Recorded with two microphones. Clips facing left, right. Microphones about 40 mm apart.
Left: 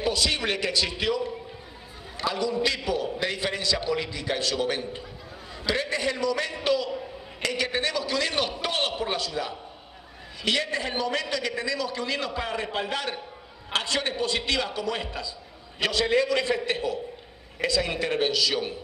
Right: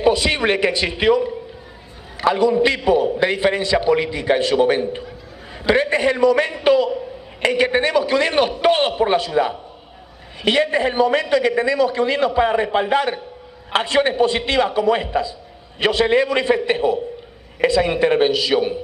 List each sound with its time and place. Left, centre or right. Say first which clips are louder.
0.0 s a man's voice: right 9 dB; right
2.2 s a man's voice: right 10 dB; right